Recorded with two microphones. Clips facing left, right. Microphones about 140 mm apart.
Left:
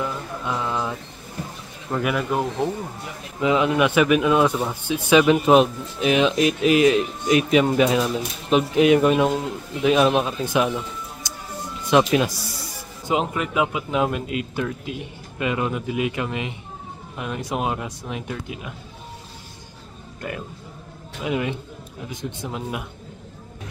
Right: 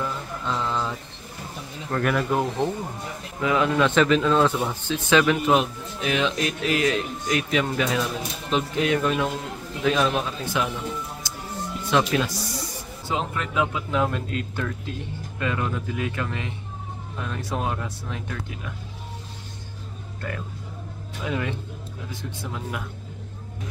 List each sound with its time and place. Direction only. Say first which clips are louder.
0.0 s mantra: left 2 dB; 15° left (ahead or behind)
1.9 s speech: even; 5° left (ahead or behind)
3.3 s speech: left 2 dB; 20° left (ahead or behind)
11.3 s music: even; 15° left (ahead or behind)
11.9 s speech: left 5 dB; 15° left (ahead or behind)
20.2 s speech: left 2 dB; 15° left (ahead or behind)